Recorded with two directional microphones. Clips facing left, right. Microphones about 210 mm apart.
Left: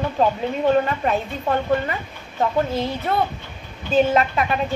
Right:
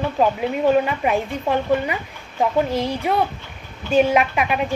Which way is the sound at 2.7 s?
40° right (ahead or behind).